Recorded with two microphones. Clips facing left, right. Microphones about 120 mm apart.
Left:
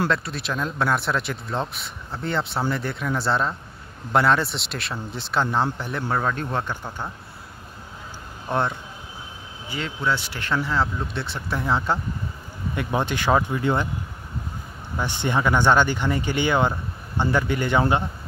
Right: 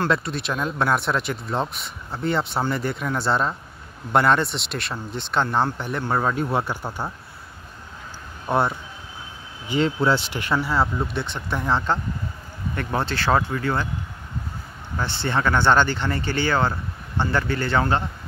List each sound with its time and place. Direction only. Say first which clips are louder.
0.1 s speech: right 2 dB; centre (ahead or behind)
8.5 s speech: right 3 dB; 5° right (ahead or behind)
9.8 s speech: right 6 dB; 35° right (ahead or behind)
10.3 s speech: right 2 dB; 10° right (ahead or behind); by 13.8 s 20° left (ahead or behind)
15.0 s speech: even; 15° left (ahead or behind)